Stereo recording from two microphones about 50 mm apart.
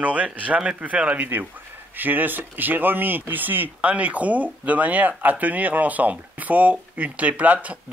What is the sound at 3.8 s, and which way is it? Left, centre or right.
Speech, right.